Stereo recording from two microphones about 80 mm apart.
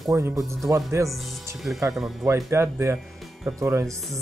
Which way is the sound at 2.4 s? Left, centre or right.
Right.